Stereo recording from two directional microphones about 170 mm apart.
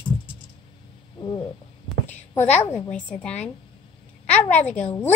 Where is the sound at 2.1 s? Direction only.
45° left (ahead or behind).